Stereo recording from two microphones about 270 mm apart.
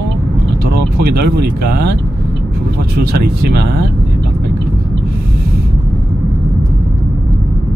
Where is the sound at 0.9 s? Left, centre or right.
Right.